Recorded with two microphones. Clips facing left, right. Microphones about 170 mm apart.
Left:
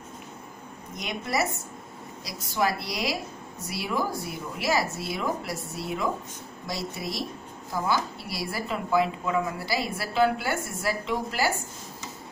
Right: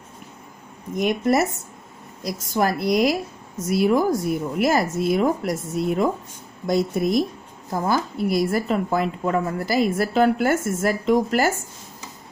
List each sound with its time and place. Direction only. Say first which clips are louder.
1.0 s speech: right 11 dB; 50° right (ahead or behind)
2.5 s speech: right 7 dB; 50° right (ahead or behind)